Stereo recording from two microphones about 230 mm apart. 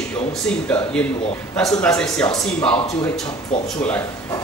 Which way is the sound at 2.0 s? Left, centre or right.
Centre.